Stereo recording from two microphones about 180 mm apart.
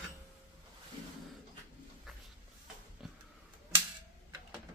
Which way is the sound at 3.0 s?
5° right (ahead or behind).